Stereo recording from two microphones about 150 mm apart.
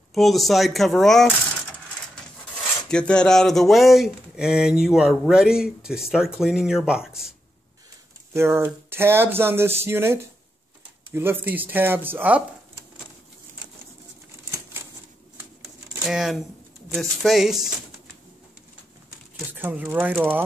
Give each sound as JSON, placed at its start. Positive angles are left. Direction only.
{"t": 0.1, "sound": "speech", "side_deg": 0}
{"t": 2.9, "sound": "speech", "side_deg": 5}
{"t": 8.3, "sound": "speech", "side_deg": -15}
{"t": 16.1, "sound": "speech", "side_deg": -5}
{"t": 19.6, "sound": "speech", "side_deg": -10}